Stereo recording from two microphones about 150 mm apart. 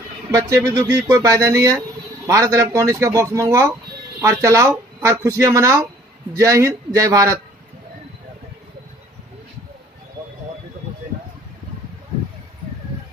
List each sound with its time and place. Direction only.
0.3 s speech: 20° right (ahead or behind)